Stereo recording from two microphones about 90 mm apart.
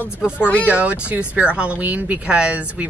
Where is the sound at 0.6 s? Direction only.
15° right (ahead or behind).